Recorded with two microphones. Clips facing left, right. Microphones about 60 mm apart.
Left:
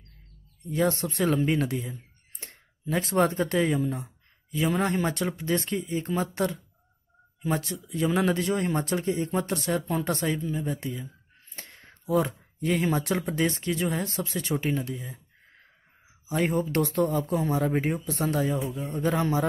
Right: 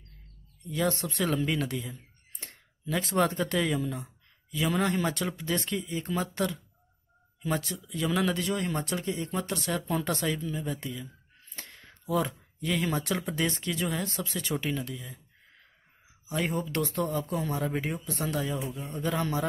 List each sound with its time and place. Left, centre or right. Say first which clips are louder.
1.0 s speech: left 4 dB; left
7.4 s speech: left 2 dB; centre; by 9.8 s left
9.8 s speech: left 2 dB; centre; by 11.1 s left
11.5 s a sound: even; centre
12.5 s speech: left 4 dB; left
16.3 s speech: left 5 dB; left